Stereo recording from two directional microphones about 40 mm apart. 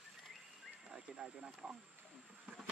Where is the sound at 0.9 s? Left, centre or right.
Centre.